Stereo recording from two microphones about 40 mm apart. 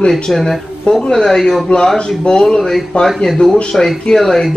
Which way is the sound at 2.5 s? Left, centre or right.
Centre.